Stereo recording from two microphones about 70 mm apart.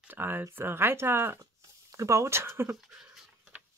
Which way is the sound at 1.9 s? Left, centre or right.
Right.